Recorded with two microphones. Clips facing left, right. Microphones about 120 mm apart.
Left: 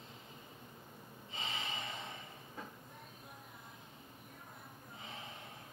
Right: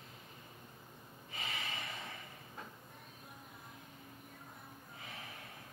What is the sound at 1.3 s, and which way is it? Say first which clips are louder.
Snort: left 1 dB; 25° left (ahead or behind).